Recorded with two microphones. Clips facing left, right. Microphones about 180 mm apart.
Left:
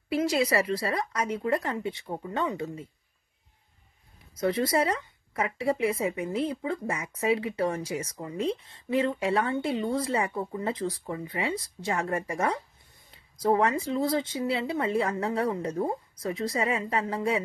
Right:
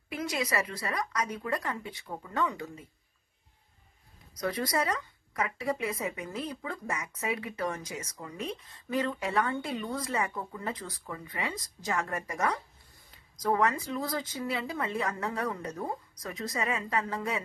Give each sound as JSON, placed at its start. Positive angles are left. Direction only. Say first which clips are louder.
{"t": 0.1, "sound": "speech", "louder": "left 7 dB", "side_deg": 30}
{"t": 4.4, "sound": "speech", "louder": "left 5 dB", "side_deg": 25}